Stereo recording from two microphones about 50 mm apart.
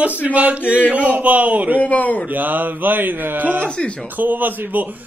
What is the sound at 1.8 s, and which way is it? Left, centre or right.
Speech, left.